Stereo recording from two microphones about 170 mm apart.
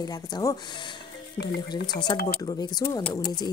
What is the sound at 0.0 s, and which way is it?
Speech, 20° left (ahead or behind).